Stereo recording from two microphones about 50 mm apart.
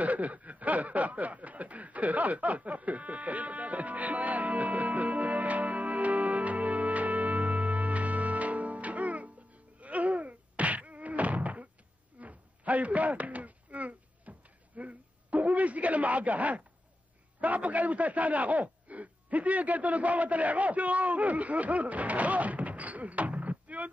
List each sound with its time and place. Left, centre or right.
0.0 s snicker: right
9.8 s thunk: right
12.2 s a sound: right
17.4 s a man's voice: right